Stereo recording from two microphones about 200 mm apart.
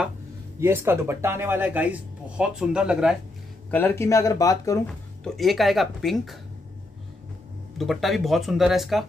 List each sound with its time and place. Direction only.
0.6 s speech: 15° right (ahead or behind)
3.7 s speech: 10° left (ahead or behind)
5.2 s speech: centre (ahead or behind)
7.7 s speech: centre (ahead or behind)